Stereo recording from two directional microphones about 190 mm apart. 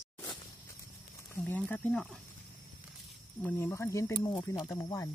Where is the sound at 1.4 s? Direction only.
10° left (ahead or behind).